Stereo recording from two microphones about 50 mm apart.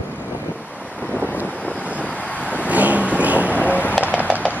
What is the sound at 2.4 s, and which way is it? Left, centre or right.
Vehicle, right.